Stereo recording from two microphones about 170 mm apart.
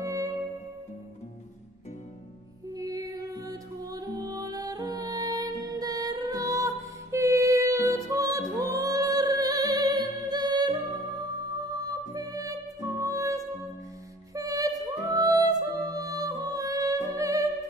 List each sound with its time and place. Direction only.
0.0 s music: 20° right (ahead or behind)
2.8 s music: 20° right (ahead or behind)